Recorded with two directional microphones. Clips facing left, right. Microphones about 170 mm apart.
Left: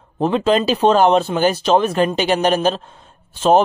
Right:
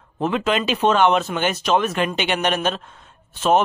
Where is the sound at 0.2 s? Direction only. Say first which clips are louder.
Left 5 dB; 35° left (ahead or behind).